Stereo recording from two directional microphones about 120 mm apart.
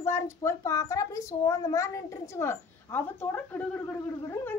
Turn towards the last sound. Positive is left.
turn(degrees=15)  # may be behind; listen again after turning